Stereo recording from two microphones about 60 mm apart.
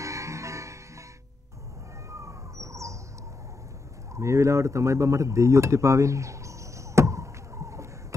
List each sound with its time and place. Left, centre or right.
0.0 s music: right
2.0 s bird: right
4.1 s a sound: right